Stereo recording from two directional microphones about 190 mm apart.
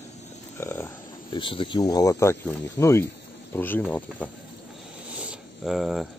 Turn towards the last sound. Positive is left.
turn(degrees=0)  # may be behind; listen again after turning